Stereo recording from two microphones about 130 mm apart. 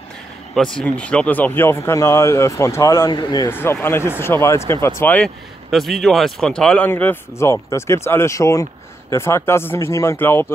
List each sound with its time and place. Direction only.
0.6 s speech: 5° left (ahead or behind); by 3.1 s 20° left (ahead or behind)
3.1 s speech: 35° left (ahead or behind)
3.4 s speech: 15° left (ahead or behind)
5.7 s speech: centre (ahead or behind); by 10.5 s 20° left (ahead or behind)